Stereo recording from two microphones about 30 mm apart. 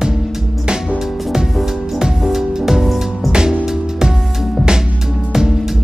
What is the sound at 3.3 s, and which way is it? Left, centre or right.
Music, right.